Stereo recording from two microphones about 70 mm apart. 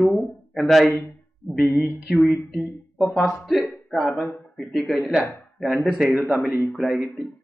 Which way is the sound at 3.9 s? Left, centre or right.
Centre.